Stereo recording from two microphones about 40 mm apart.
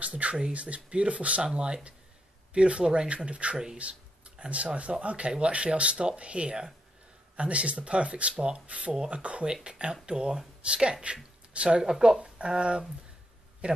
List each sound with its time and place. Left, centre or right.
0.0 s a sound: right
0.5 s speech: right
3.7 s a sound: right
4.5 s speech: right
8.9 s speech: centre
9.2 s speech: right
11.8 s speech: centre
12.2 s speech: right